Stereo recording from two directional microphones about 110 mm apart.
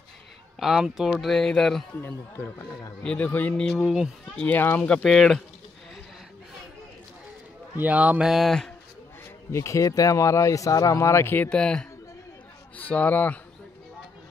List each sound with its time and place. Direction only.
0.6 s speech: 5° right (ahead or behind)
2.0 s speech: 20° left (ahead or behind)
3.0 s speech: 10° left (ahead or behind)
3.6 s speech: centre (ahead or behind)
4.4 s speech: 15° left (ahead or behind)
7.7 s speech: 15° right (ahead or behind); by 8.7 s 5° left (ahead or behind)
9.5 s speech: 25° left (ahead or behind)
11.4 s speech: 10° left (ahead or behind)